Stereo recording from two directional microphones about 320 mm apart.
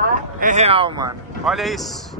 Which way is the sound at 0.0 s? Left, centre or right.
Right.